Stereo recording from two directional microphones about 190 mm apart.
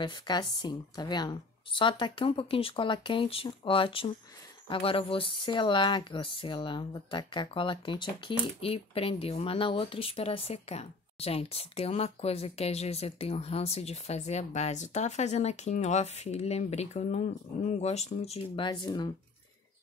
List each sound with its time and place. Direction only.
0.0 s speech: 25° left (ahead or behind)